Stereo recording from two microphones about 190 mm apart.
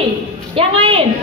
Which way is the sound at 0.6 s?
30° right (ahead or behind).